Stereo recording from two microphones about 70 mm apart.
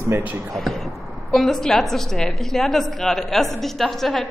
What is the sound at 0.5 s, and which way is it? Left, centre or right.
A woman's voice, centre.